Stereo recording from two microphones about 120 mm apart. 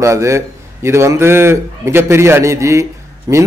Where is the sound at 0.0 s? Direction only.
25° right (ahead or behind).